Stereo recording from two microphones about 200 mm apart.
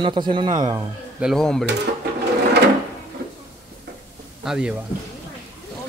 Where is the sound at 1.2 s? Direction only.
Centre (ahead or behind).